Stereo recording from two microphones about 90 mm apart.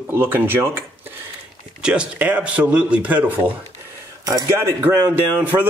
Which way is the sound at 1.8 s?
10° right (ahead or behind).